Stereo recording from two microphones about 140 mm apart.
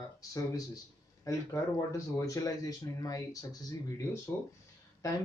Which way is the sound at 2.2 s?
25° left (ahead or behind).